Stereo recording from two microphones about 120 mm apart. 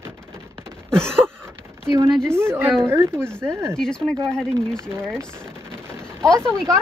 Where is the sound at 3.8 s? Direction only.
5° left (ahead or behind).